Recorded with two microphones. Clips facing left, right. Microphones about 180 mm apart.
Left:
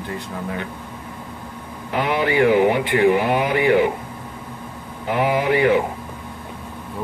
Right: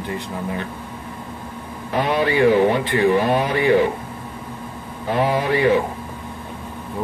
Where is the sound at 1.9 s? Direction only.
15° left (ahead or behind).